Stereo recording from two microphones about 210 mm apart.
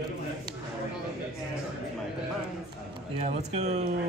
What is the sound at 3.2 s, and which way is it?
Speech, 30° right (ahead or behind).